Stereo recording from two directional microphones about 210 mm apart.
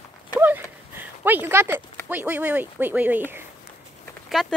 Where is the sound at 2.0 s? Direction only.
10° right (ahead or behind).